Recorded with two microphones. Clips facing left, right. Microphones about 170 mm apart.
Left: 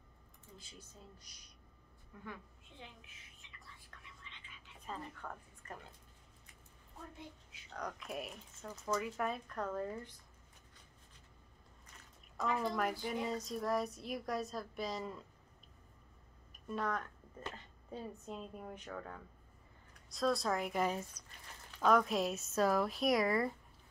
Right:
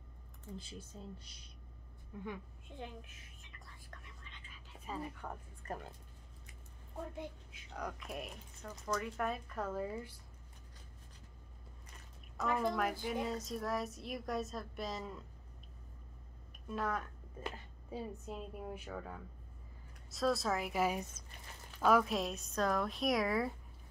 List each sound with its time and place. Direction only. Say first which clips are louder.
0.6 s speech: right 6 dB; 30° right (ahead or behind)
2.7 s a woman's voice: right 8 dB; 45° right (ahead or behind)
3.5 s whispering: right 3 dB; 45° right (ahead or behind)
4.8 s a woman's voice: right 3 dB; 10° right (ahead or behind)
5.6 s speech: right 6 dB; 35° right (ahead or behind)
7.7 s a woman's voice: even; 5° right (ahead or behind)
12.4 s a woman's voice: right 1 dB; centre (ahead or behind)
16.6 s a woman's voice: even; centre (ahead or behind)